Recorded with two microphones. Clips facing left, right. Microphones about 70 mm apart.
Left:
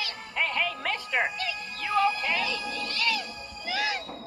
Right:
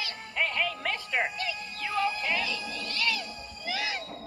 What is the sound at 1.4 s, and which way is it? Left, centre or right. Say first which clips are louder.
Music: left 1 dB; centre.